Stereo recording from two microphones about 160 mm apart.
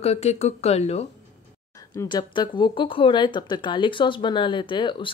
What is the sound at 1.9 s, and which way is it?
Speech, 30° left (ahead or behind).